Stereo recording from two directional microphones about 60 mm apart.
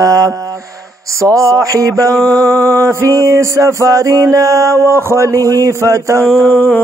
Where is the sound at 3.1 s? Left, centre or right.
Right.